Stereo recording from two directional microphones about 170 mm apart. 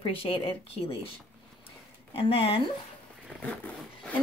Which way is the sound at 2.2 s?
35° left (ahead or behind).